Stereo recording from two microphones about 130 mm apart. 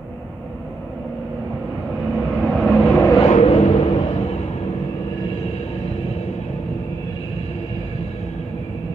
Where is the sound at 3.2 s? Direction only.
55° left (ahead or behind).